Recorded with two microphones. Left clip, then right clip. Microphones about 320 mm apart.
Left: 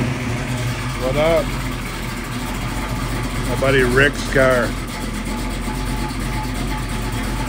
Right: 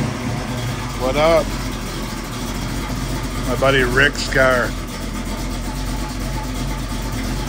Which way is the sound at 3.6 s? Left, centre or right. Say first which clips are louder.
Even; centre.